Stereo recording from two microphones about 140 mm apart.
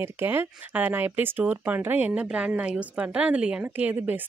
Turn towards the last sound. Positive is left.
turn(degrees=-10)  # may be behind; listen again after turning